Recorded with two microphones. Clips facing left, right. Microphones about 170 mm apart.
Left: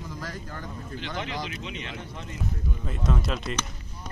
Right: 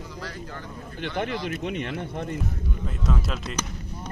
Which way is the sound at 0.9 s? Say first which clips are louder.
Right 5 dB; 55° right (ahead or behind).